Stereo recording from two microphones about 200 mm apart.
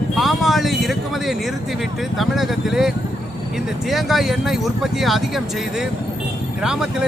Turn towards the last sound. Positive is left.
turn(degrees=-5)  # may be behind; listen again after turning